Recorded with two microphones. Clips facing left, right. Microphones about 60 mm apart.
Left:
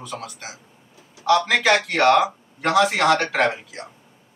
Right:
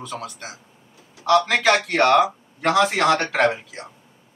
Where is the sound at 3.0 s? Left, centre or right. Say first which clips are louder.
Even; right.